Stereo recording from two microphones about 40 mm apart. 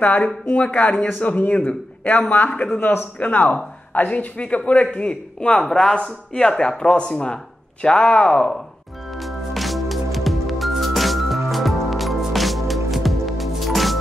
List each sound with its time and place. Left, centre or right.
0.5 s a man's voice: left
2.8 s a man's voice: left
3.2 s a man's voice: left
5.6 s speech: centre
9.1 s music: centre